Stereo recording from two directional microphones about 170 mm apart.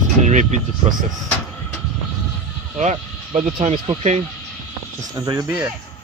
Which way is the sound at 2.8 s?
40° right (ahead or behind).